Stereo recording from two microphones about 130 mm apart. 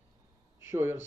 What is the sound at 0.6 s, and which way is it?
Speech, 20° right (ahead or behind).